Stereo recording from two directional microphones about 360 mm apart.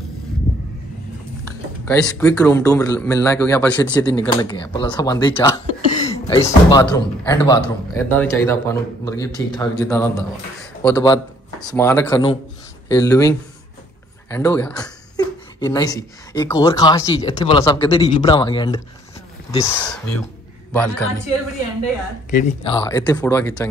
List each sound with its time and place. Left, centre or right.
1.9 s a man's voice: centre
22.3 s speech: centre